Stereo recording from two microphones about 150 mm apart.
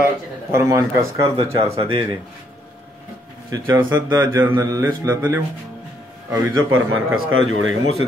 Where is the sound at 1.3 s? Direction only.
35° right (ahead or behind).